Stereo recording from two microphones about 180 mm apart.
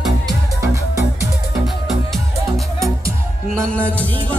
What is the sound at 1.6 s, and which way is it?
Music, centre (ahead or behind).